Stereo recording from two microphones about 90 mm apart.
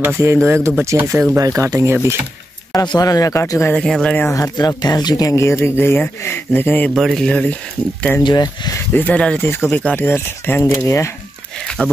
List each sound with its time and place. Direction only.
0.0 s speech: 30° right (ahead or behind)
2.7 s speech: 50° left (ahead or behind); by 3.7 s 30° left (ahead or behind)
3.7 s speech: 5° left (ahead or behind)
4.3 s speech: 45° left (ahead or behind); by 6.9 s 20° left (ahead or behind)
7.2 s speech: 5° left (ahead or behind)
8.2 s speech: 55° left (ahead or behind)
8.9 s speech: 15° left (ahead or behind)
9.4 s speech: 25° left (ahead or behind)
11.8 s speech: 15° left (ahead or behind)